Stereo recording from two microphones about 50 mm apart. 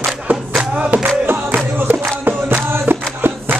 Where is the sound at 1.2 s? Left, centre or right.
Right.